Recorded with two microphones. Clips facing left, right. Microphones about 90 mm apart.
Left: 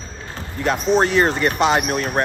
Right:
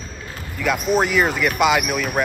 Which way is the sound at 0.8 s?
5° right (ahead or behind).